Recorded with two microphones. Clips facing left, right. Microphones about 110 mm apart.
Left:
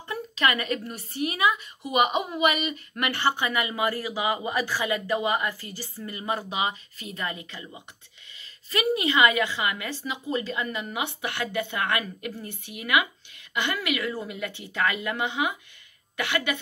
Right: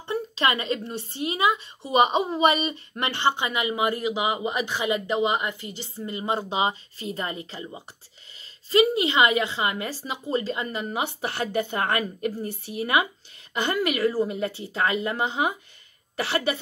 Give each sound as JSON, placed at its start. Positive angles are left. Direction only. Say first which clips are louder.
{"t": 0.0, "sound": "a woman's voice", "louder": "right 2 dB", "side_deg": -30}